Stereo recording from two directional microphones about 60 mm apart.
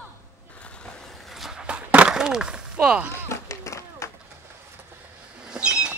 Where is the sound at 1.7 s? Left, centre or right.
Right.